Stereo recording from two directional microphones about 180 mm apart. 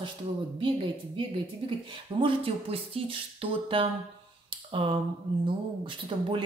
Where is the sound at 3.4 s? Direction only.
30° right (ahead or behind).